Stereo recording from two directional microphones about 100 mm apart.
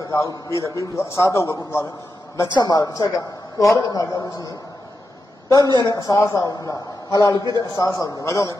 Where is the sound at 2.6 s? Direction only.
40° left (ahead or behind).